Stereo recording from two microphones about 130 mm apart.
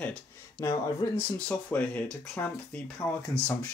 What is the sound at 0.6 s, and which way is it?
Speech, 20° left (ahead or behind).